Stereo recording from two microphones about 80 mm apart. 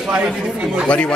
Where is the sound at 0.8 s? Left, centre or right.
Centre.